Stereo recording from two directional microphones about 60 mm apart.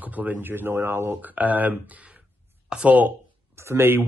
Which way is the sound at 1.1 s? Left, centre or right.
Right.